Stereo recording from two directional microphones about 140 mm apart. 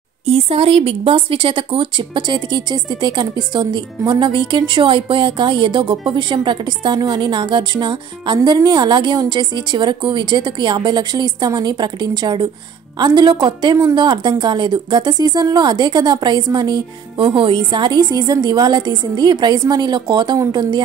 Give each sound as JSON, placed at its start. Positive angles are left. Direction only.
{"t": 0.2, "sound": "a woman's voice", "side_deg": -45}